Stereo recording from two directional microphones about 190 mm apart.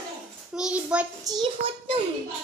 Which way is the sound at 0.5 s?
5° right (ahead or behind).